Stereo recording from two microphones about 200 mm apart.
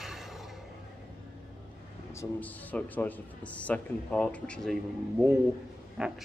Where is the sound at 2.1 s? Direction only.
10° left (ahead or behind).